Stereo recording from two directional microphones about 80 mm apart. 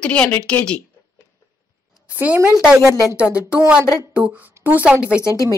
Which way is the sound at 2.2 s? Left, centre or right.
Right.